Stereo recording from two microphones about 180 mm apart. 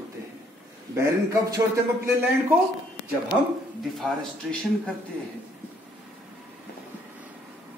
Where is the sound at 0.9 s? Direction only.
15° right (ahead or behind).